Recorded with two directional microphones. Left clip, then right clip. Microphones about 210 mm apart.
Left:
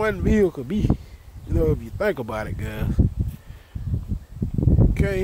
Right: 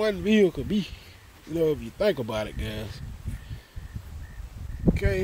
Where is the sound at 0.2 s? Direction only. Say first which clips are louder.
Right 1 dB; 35° left (ahead or behind).